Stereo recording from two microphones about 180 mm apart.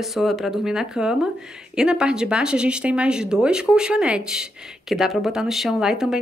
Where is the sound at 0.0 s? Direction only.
Centre (ahead or behind).